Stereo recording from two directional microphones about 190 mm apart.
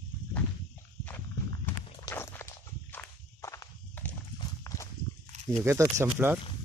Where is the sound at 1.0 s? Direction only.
10° left (ahead or behind).